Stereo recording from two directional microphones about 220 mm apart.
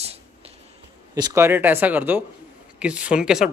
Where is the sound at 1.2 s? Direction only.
15° right (ahead or behind).